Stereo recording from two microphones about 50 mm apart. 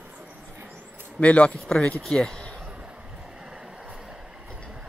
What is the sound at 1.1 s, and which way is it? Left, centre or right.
Speech, left.